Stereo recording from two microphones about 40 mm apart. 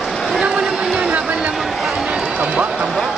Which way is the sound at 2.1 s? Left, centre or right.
Right.